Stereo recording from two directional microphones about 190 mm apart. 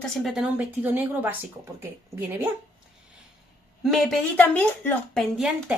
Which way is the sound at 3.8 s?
Centre (ahead or behind).